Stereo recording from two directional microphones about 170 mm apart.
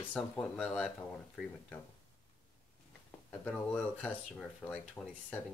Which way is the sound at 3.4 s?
10° left (ahead or behind).